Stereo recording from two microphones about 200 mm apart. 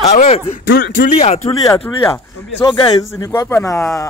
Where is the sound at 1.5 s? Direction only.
20° left (ahead or behind).